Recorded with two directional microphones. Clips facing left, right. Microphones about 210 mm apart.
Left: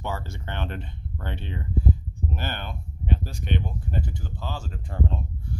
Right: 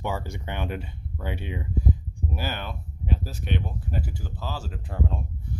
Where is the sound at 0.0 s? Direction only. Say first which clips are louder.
Right 2 dB; 15° right (ahead or behind).